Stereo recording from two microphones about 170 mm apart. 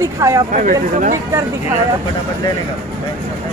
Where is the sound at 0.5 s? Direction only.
50° right (ahead or behind).